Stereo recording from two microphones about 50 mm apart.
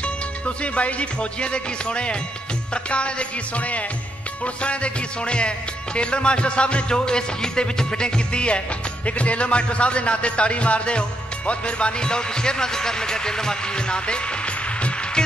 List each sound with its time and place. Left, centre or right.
0.6 s speech: left